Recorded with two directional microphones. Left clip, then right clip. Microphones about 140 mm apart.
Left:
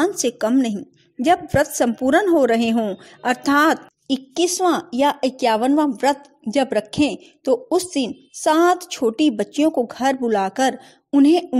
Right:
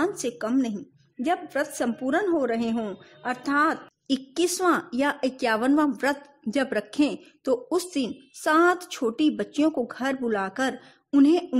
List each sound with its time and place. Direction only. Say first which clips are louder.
0.0 s a woman's voice: left 7 dB; 35° left (ahead or behind)
4.1 s a woman's voice: left 5 dB; 20° left (ahead or behind)